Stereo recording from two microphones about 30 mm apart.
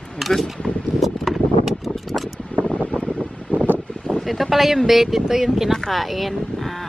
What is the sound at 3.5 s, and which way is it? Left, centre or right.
Wind, right.